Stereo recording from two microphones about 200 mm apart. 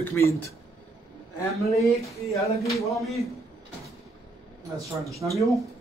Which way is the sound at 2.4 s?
15° left (ahead or behind).